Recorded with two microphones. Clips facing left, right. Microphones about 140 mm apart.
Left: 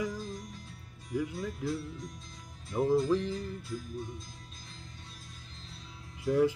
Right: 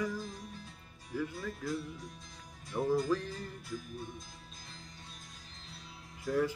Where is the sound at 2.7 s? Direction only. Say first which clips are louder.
Left 4 dB; 15° left (ahead or behind).